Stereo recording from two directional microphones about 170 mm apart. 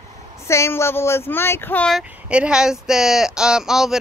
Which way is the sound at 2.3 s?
5° right (ahead or behind).